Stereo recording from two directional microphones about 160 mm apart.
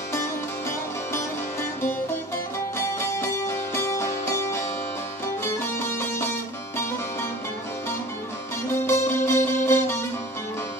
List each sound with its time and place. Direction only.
0.1 s music: 15° left (ahead or behind)
8.8 s music: 15° left (ahead or behind)